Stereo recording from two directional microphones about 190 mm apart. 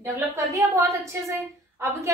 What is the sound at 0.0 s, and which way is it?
Speech, 15° right (ahead or behind).